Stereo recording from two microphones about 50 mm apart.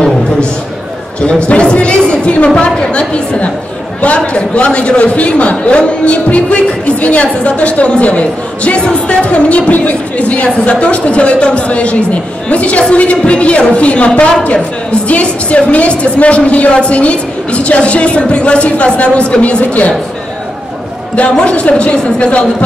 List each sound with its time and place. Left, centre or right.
1.5 s a sound: left
4.2 s a man's voice: centre
21.2 s a man's voice: left